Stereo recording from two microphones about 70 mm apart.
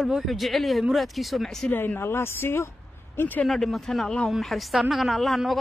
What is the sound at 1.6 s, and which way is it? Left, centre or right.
Speech, left.